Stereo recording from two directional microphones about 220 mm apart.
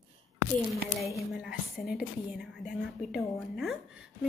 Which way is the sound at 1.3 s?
Centre (ahead or behind).